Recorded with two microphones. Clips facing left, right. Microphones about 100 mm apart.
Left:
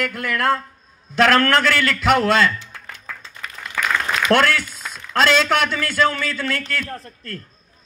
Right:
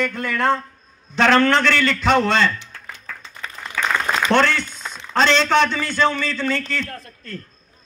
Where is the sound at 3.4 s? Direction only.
30° right (ahead or behind).